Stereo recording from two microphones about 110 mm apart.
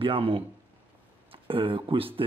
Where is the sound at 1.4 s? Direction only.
55° right (ahead or behind).